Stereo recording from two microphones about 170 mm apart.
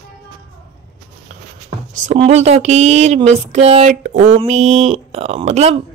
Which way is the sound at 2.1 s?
40° right (ahead or behind).